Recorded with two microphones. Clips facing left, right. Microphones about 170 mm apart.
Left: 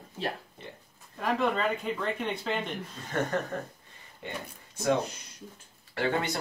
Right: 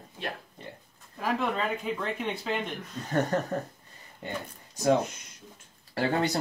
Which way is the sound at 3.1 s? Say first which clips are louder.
Right 3 dB; 40° right (ahead or behind).